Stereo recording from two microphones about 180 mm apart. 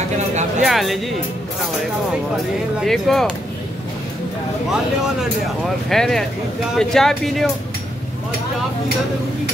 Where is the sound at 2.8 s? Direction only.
Centre (ahead or behind).